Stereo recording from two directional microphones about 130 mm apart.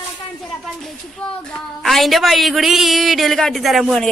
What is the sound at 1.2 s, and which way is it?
A woman's voice, 5° left (ahead or behind).